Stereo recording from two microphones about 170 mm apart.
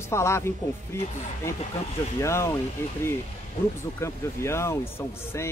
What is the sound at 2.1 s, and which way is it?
Speech, 15° left (ahead or behind).